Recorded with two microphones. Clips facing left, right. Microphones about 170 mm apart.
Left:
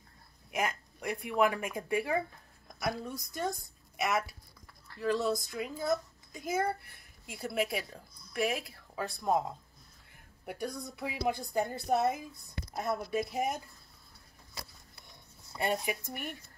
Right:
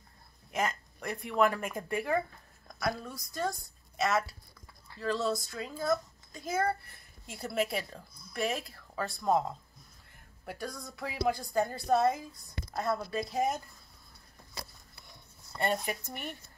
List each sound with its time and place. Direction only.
0.5 s a woman's voice: 10° left (ahead or behind)
10.4 s a woman's voice: 20° left (ahead or behind)
15.5 s speech: 10° left (ahead or behind)